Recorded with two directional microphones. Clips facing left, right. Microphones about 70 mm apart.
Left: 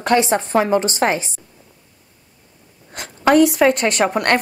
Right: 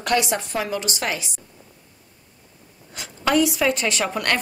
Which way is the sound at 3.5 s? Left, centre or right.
Left.